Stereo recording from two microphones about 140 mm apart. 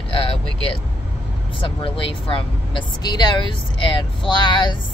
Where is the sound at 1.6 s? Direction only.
35° left (ahead or behind).